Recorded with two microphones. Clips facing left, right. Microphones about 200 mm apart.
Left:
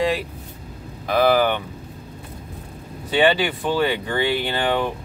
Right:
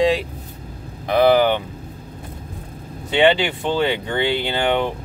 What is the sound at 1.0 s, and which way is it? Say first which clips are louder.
Speech: right 3 dB; 20° right (ahead or behind).